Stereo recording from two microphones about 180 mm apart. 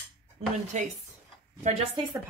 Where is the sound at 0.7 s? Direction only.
40° right (ahead or behind).